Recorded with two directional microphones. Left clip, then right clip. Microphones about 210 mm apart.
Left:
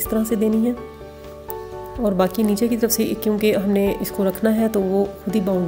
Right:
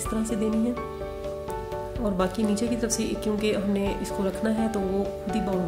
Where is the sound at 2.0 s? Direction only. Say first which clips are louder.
Left 8 dB; 25° left (ahead or behind).